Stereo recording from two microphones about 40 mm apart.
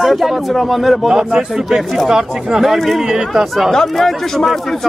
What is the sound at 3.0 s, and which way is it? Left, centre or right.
Speech, centre.